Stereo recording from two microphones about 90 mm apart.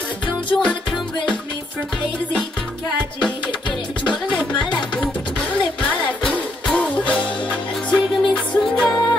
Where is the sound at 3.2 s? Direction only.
60° left (ahead or behind).